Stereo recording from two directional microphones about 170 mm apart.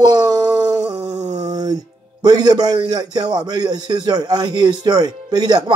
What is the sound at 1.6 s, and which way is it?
A man's voice, 25° right (ahead or behind).